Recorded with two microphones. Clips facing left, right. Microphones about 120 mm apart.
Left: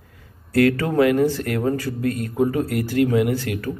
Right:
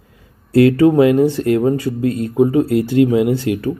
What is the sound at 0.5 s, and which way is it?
Speech, 25° right (ahead or behind).